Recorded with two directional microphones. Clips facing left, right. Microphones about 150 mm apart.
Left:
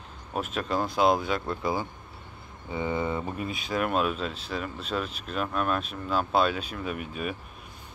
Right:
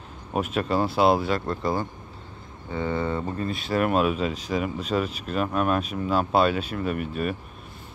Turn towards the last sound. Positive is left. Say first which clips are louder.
# right 5 dB
turn(degrees=0)  # may be behind; listen again after turning